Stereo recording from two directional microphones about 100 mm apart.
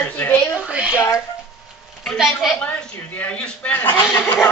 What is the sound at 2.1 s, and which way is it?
Speech, 5° right (ahead or behind).